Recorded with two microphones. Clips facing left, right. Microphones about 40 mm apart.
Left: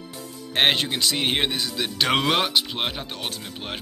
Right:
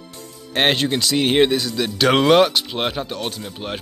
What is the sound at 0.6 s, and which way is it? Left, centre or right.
Speech, centre.